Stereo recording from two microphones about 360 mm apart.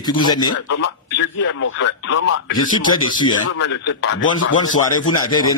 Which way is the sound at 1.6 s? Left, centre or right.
Left.